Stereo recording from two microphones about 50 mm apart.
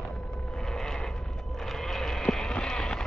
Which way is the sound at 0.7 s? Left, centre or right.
Centre.